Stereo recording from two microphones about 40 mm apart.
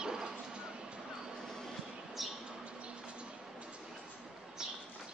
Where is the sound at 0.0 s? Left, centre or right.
Centre.